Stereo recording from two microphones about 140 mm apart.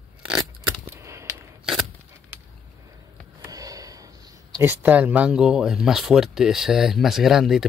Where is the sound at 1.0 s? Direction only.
20° right (ahead or behind).